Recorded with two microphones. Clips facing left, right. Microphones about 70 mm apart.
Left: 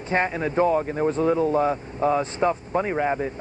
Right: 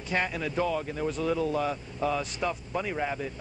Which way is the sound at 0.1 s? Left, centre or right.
Left.